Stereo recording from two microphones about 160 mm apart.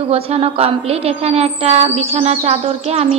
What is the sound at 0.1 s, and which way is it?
A woman's voice, 40° right (ahead or behind).